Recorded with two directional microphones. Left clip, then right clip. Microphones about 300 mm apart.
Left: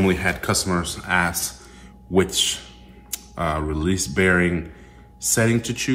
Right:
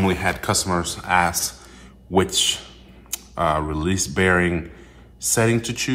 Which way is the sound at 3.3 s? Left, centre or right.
Centre.